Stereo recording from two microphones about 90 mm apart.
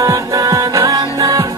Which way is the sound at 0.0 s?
40° right (ahead or behind).